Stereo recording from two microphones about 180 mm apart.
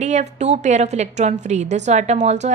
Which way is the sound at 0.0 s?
40° right (ahead or behind).